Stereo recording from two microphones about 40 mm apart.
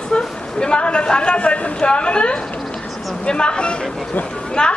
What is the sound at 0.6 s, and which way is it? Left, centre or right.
A woman's voice, left.